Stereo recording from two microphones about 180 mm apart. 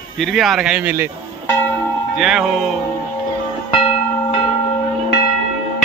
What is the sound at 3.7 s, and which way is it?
Music, 30° left (ahead or behind).